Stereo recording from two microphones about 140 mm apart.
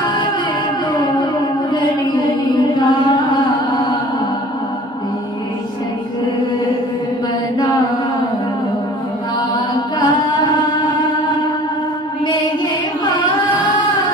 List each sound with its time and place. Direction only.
3.7 s music: 30° left (ahead or behind)
9.9 s singing: 30° left (ahead or behind)